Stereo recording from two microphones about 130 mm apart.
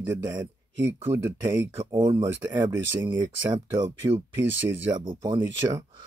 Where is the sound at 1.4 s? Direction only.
35° right (ahead or behind).